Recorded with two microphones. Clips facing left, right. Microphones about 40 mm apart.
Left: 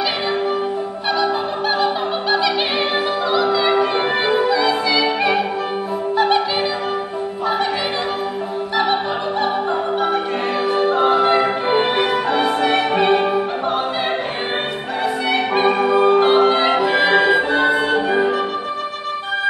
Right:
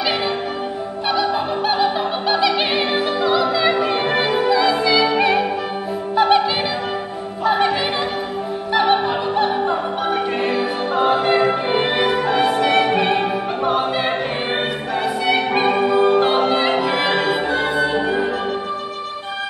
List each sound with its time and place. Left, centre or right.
1.1 s music: centre
3.3 s opera: centre
3.8 s music: centre
4.4 s opera: centre
7.4 s music: centre
10.9 s music: centre
15.2 s music: centre
16.7 s music: centre
17.5 s music: left